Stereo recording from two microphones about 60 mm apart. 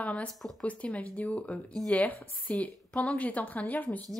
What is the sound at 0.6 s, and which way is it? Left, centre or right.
A woman's voice, left.